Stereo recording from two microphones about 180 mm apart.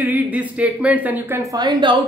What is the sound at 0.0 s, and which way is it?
Speech, 10° right (ahead or behind).